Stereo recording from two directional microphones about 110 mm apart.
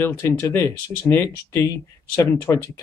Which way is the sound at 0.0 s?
20° left (ahead or behind).